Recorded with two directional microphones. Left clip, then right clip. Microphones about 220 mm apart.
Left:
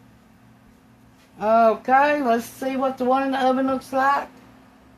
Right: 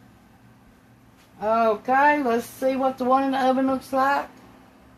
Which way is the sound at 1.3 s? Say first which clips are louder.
Left 4 dB; 55° left (ahead or behind).